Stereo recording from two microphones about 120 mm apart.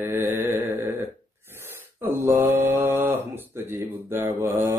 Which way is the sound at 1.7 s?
20° right (ahead or behind).